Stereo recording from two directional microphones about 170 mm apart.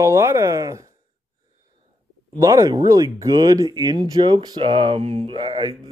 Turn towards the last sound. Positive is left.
turn(degrees=-25)  # may be behind; listen again after turning